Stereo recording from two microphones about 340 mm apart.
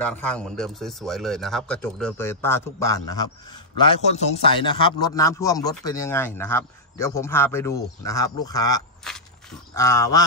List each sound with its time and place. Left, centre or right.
0.0 s a man's voice: centre